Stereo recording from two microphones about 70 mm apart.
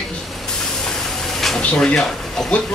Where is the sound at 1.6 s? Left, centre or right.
Centre.